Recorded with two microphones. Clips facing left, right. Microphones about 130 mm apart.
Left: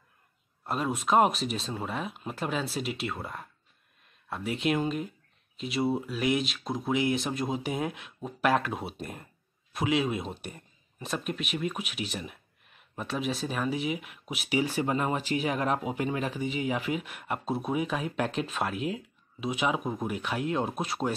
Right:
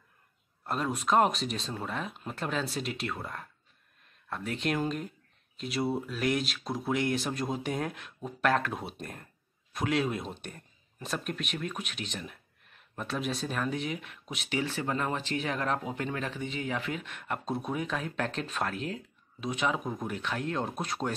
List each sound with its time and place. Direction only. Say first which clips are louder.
0.7 s speech: left 1 dB; 5° left (ahead or behind)